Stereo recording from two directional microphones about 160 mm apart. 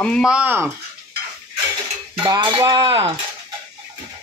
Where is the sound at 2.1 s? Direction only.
30° right (ahead or behind).